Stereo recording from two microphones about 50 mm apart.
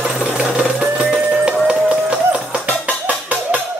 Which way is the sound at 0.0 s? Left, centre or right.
Centre.